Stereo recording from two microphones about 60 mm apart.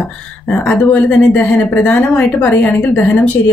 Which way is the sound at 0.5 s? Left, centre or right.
Left.